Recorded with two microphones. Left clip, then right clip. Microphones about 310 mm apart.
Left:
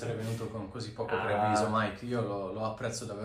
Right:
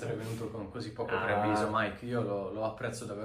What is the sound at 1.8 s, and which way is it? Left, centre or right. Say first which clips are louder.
Speech: even; centre.